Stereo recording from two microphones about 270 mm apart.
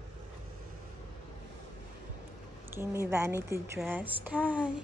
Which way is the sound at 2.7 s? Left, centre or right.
Centre.